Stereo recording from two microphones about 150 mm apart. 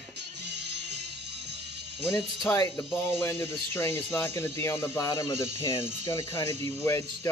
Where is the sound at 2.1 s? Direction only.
15° left (ahead or behind).